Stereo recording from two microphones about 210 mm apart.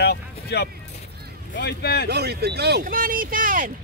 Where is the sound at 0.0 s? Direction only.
50° left (ahead or behind).